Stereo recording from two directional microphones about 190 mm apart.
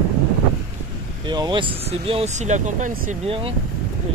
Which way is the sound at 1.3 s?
25° right (ahead or behind).